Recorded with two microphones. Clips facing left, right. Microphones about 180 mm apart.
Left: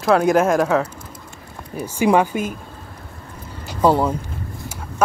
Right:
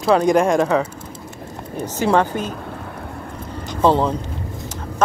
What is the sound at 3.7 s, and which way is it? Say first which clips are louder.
Speech: even; 10° left (ahead or behind).